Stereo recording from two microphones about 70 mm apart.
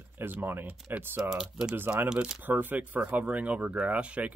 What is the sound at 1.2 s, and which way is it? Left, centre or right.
Speech, centre.